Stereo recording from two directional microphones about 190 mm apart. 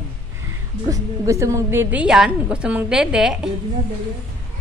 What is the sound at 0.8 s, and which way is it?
A woman's voice, 15° right (ahead or behind).